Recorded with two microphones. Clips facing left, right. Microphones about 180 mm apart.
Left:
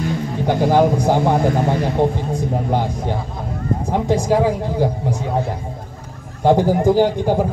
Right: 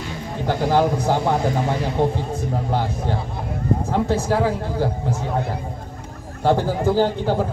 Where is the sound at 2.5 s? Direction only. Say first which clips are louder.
Left 2 dB; 15° left (ahead or behind).